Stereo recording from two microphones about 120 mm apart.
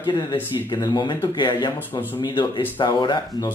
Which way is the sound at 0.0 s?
40° left (ahead or behind).